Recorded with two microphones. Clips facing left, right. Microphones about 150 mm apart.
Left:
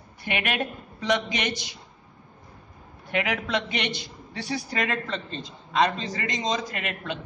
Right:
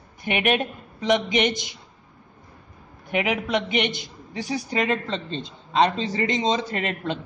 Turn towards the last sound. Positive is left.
turn(degrees=-30)  # may be behind; listen again after turning